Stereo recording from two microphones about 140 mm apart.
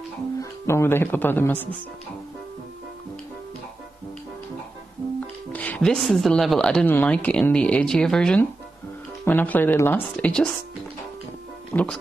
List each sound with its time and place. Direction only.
0.4 s speech: 20° left (ahead or behind)
5.2 s speech: 10° left (ahead or behind)
11.7 s speech: 5° left (ahead or behind)